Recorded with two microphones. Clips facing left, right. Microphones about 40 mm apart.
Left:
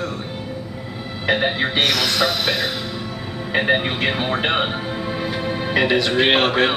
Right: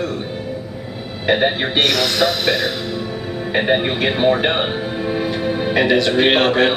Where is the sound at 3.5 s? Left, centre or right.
Right.